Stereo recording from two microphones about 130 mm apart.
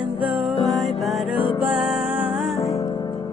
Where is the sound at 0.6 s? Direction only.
Centre (ahead or behind).